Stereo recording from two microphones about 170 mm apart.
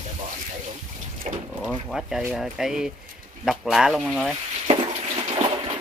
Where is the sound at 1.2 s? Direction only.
40° right (ahead or behind).